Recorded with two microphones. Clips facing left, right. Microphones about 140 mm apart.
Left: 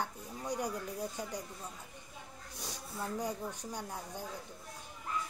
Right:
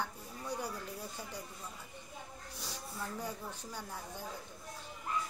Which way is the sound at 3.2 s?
15° left (ahead or behind).